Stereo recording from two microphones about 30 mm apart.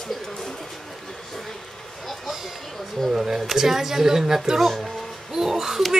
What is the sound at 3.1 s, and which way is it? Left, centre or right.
Speech, centre.